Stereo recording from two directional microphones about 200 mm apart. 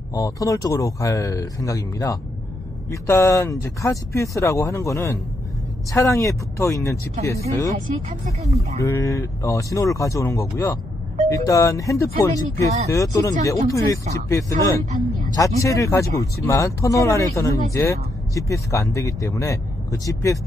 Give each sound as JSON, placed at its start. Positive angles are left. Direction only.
{"t": 0.1, "sound": "speech", "side_deg": 15}
{"t": 8.8, "sound": "speech", "side_deg": 15}
{"t": 14.9, "sound": "a sound", "side_deg": -40}
{"t": 15.6, "sound": "speech", "side_deg": 15}